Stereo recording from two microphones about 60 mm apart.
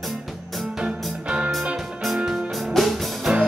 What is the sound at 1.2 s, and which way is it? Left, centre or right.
Music, centre.